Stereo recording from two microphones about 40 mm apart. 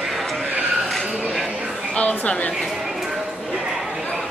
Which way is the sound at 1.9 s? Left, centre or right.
Left.